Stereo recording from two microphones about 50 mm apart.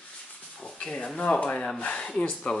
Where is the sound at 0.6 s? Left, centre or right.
Centre.